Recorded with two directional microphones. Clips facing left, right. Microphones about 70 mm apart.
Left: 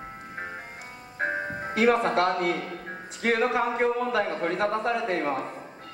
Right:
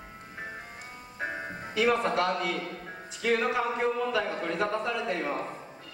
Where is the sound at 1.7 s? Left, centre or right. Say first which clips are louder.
Left 3 dB; left.